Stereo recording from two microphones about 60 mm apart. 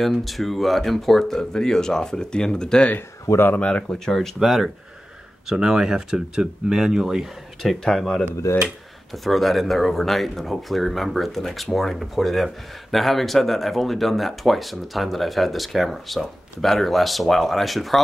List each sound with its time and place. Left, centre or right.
0.0 s speech: centre
4.1 s speech: centre
7.8 s speech: centre